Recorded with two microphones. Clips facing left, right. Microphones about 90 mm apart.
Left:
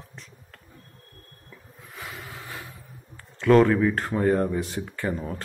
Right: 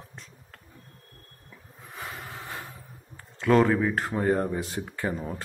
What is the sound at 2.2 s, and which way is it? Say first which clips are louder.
Snort: right 1 dB; 30° right (ahead or behind).